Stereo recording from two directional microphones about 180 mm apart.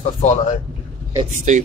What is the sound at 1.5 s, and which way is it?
Speech, 45° right (ahead or behind).